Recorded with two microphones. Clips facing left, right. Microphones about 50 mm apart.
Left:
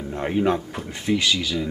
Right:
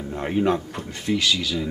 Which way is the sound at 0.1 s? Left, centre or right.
Centre.